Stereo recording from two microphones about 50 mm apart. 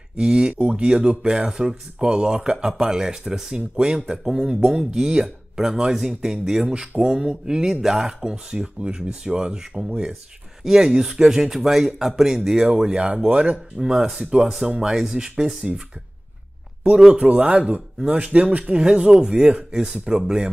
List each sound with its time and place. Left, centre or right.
0.2 s speech: centre
0.9 s speech: centre
8.5 s speech: centre
12.8 s speech: right
17.1 s speech: right